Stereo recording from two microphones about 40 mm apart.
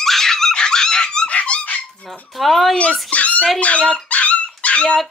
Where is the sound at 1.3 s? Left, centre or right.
Left.